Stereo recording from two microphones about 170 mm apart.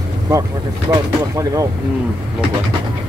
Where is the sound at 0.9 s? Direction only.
20° right (ahead or behind).